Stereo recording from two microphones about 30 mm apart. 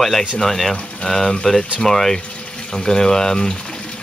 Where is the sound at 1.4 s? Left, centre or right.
Centre.